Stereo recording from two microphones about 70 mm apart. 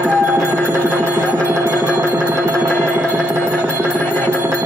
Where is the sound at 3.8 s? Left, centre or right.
Left.